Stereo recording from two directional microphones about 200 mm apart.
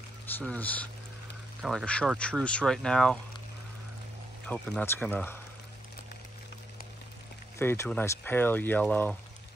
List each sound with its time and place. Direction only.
0.3 s speech: 5° left (ahead or behind)
4.5 s speech: 5° left (ahead or behind)
7.5 s speech: 15° left (ahead or behind)